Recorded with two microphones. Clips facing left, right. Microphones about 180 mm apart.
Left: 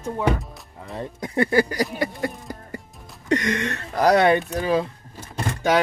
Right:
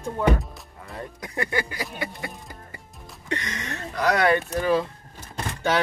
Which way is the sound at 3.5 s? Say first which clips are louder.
Left 9 dB; 65° left (ahead or behind).